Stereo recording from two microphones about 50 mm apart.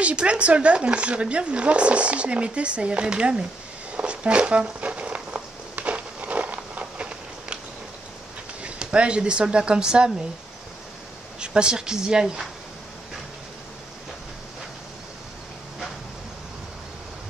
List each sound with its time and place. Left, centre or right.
0.0 s speech: right
3.9 s a sound: right
8.6 s speech: right
11.3 s speech: centre